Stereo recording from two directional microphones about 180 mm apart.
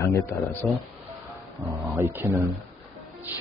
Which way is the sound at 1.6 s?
15° right (ahead or behind).